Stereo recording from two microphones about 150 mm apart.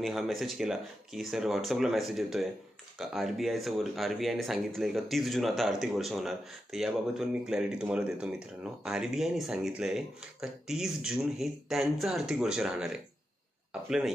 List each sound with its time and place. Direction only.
0.0 s speech: centre (ahead or behind)